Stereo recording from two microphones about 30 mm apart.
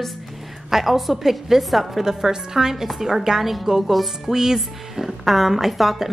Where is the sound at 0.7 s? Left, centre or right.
Centre.